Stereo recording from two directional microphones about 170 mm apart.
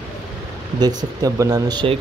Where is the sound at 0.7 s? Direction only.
20° right (ahead or behind).